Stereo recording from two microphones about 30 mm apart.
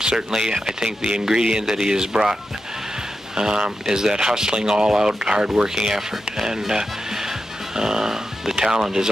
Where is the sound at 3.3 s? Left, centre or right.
Right.